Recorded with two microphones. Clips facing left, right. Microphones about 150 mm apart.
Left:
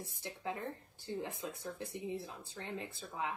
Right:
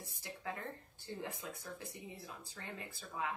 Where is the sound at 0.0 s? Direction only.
20° left (ahead or behind).